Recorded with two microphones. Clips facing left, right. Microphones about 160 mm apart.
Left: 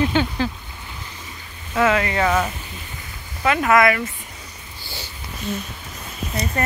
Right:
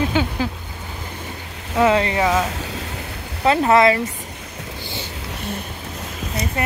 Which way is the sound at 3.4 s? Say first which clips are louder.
Right 2 dB; 30° right (ahead or behind).